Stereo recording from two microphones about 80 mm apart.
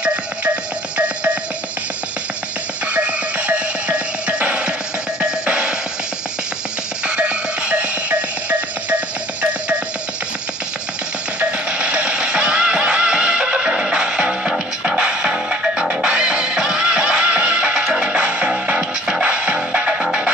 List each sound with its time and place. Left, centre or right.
0.9 s music: centre
2.9 s music: centre
7.1 s music: centre
11.3 s music: centre